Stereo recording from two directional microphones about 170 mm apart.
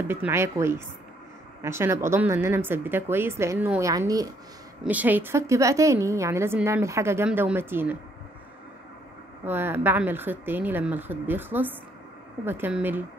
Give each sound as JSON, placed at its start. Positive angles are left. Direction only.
{"t": 0.1, "sound": "speech", "side_deg": -15}
{"t": 4.8, "sound": "speech", "side_deg": -10}
{"t": 9.4, "sound": "speech", "side_deg": -10}